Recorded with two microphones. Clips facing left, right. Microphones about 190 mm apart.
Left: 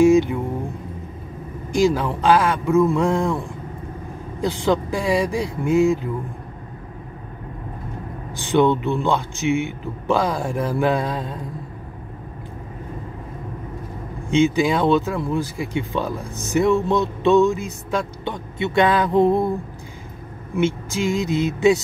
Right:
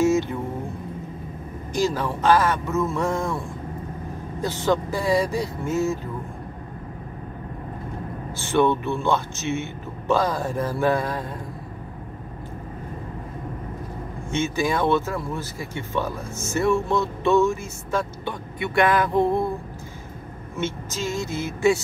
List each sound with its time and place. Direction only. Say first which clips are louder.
0.0 s speech: left 6 dB; 15° left (ahead or behind)
1.8 s speech: left 5 dB; 15° left (ahead or behind)
8.4 s speech: left 3 dB; 15° left (ahead or behind)
14.3 s speech: left 6 dB; 15° left (ahead or behind)
20.5 s speech: left 8 dB; 15° left (ahead or behind)